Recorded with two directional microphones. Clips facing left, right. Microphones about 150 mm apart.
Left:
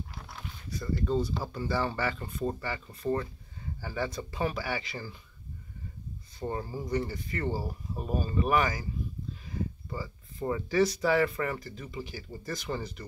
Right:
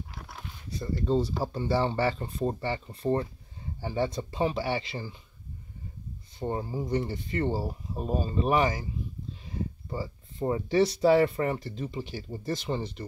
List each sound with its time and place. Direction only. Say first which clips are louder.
0.7 s speech: right 2 dB; 30° right (ahead or behind)
6.4 s speech: right 3 dB; 20° right (ahead or behind)
9.8 s speech: right 3 dB; 30° right (ahead or behind)